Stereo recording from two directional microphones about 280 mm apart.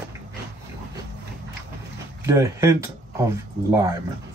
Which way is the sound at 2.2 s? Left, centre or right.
Centre.